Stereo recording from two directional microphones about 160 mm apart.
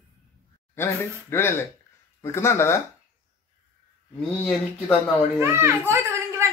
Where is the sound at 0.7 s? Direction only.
15° left (ahead or behind).